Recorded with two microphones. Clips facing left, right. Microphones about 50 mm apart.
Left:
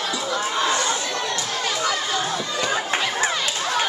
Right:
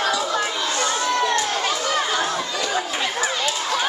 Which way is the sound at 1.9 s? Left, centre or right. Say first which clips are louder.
Right 3 dB; right.